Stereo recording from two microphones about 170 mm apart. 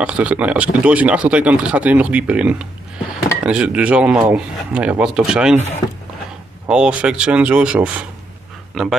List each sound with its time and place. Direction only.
0.0 s speech: 10° right (ahead or behind)
6.7 s speech: 5° right (ahead or behind)